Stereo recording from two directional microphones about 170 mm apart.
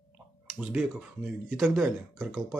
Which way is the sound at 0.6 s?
5° right (ahead or behind).